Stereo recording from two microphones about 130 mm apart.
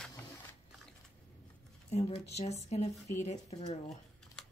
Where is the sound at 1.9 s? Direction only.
55° left (ahead or behind).